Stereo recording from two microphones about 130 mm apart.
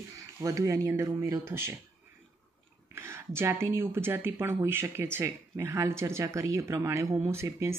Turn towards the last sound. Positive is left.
turn(degrees=-20)  # may be behind; listen again after turning